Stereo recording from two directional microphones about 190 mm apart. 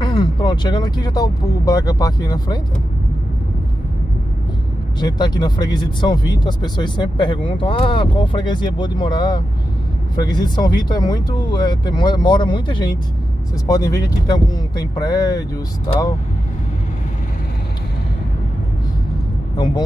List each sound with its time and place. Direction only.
0.0 s speech: 25° left (ahead or behind)
5.0 s speech: 20° left (ahead or behind)
19.5 s speech: 20° left (ahead or behind)